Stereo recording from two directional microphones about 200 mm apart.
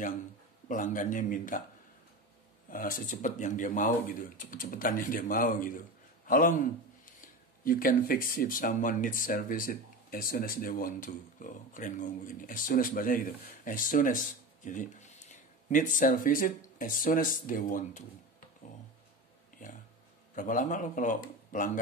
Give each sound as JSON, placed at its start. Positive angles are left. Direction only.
{"t": 0.7, "sound": "speech", "side_deg": 40}
{"t": 2.7, "sound": "a man's voice", "side_deg": 45}
{"t": 7.6, "sound": "speech", "side_deg": 45}
{"t": 20.3, "sound": "speech", "side_deg": 40}